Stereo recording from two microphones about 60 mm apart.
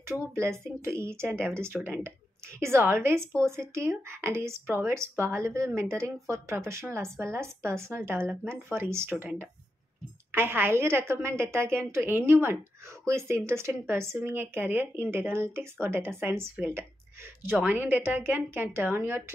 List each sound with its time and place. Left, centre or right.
0.0 s speech: right
10.3 s speech: right
13.0 s speech: right
17.6 s speech: right